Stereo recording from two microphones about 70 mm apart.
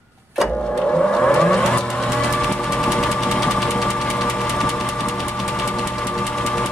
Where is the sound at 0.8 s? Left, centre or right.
Centre.